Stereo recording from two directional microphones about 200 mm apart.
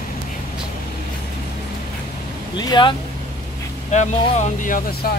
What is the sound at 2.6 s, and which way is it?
Speech, 20° left (ahead or behind).